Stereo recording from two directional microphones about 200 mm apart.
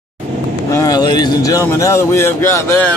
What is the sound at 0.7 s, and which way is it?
Speech, 15° left (ahead or behind).